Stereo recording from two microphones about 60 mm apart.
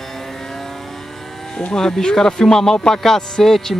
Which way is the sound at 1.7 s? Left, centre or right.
Centre.